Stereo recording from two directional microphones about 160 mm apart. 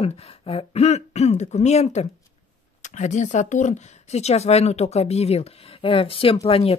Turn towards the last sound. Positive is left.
turn(degrees=35)  # may be behind; listen again after turning